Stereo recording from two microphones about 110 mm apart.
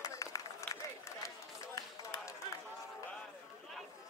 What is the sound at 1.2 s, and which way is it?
Run, 30° left (ahead or behind).